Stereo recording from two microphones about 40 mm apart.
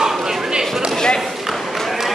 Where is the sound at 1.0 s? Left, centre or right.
Centre.